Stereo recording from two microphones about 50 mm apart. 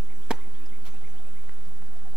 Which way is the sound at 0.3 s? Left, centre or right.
Centre.